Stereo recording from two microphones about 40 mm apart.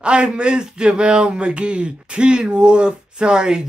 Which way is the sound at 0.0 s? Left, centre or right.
Right.